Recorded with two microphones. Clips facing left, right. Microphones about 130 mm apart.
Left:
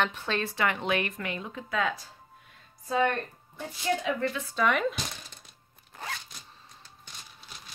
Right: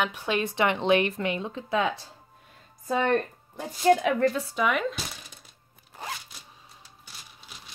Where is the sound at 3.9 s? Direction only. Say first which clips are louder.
Right 7 dB; 45° right (ahead or behind).